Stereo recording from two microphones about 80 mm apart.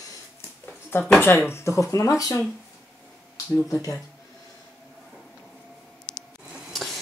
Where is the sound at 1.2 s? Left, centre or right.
Left.